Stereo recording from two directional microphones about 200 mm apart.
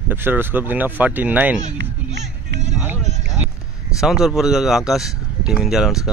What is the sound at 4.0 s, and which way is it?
Speech, centre (ahead or behind).